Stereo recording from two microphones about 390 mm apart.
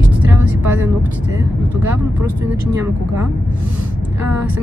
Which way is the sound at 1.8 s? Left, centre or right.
Centre.